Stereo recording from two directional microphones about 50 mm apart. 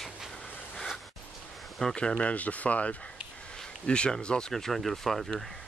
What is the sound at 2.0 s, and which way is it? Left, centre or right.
Speech, left.